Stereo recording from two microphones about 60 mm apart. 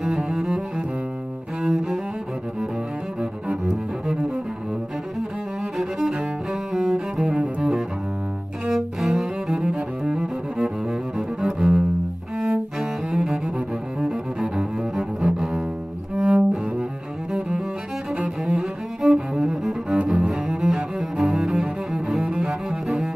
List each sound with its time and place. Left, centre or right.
0.0 s cello: centre
3.2 s cello: centre
6.9 s cello: centre
8.6 s cello: centre
13.1 s double bass: centre
13.9 s cello: centre
16.2 s cello: centre
18.1 s cello: centre